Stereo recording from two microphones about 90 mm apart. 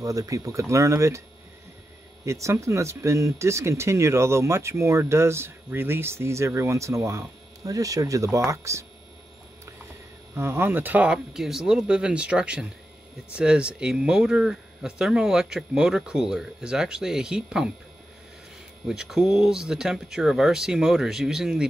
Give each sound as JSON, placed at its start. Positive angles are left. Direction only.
{"t": 0.0, "sound": "speech", "side_deg": -40}
{"t": 2.2, "sound": "speech", "side_deg": -35}
{"t": 10.3, "sound": "speech", "side_deg": -30}
{"t": 11.3, "sound": "speech", "side_deg": -5}
{"t": 18.9, "sound": "speech", "side_deg": -5}